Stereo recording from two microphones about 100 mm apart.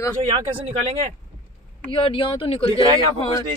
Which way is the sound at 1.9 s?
60° left (ahead or behind).